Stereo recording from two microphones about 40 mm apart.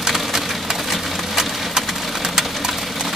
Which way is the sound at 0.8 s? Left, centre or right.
Centre.